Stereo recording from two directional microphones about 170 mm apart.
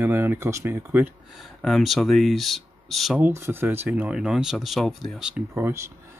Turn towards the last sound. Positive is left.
turn(degrees=-15)  # may be behind; listen again after turning